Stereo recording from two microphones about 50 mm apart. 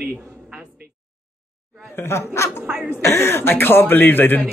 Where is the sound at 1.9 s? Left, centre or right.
Left.